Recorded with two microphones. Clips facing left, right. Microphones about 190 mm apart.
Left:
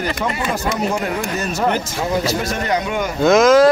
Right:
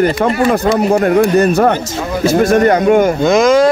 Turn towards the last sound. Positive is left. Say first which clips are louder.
# right 1 dB
turn(degrees=0)  # may be behind; listen again after turning